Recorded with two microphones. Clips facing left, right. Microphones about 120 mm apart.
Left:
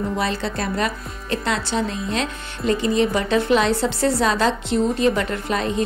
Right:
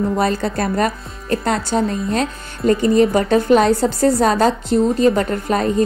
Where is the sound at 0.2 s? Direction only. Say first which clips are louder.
Right 5 dB; 45° right (ahead or behind).